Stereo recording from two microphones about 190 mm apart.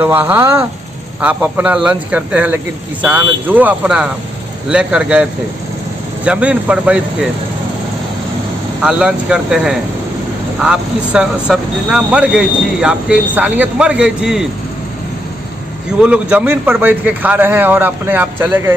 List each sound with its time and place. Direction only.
0.0 s speech: 10° right (ahead or behind)
8.8 s speech: 5° right (ahead or behind)
16.0 s speech: 5° right (ahead or behind)